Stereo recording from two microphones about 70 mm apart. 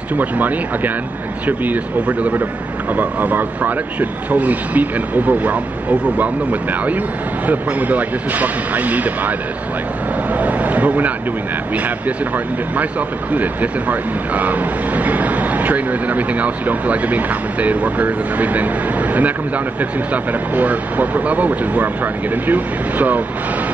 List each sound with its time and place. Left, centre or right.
0.2 s speech: right
10.3 s a sound: right
13.3 s speech: right